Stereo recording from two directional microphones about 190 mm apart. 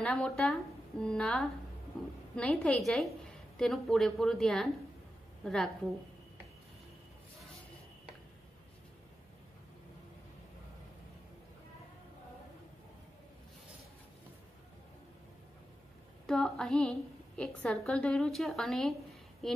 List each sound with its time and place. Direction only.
0.0 s a woman's voice: 5° left (ahead or behind)
16.3 s speech: 5° left (ahead or behind)